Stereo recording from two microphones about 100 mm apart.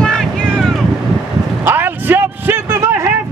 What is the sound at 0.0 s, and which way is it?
Boat, 5° left (ahead or behind).